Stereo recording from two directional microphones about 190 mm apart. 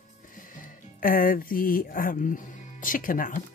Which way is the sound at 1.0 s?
50° left (ahead or behind).